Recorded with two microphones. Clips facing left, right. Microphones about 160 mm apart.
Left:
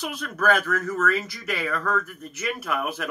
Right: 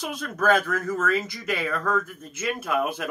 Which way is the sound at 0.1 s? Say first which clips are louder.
Right 2 dB; 25° right (ahead or behind).